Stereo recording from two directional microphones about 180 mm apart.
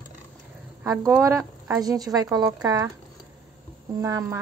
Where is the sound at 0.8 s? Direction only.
10° right (ahead or behind).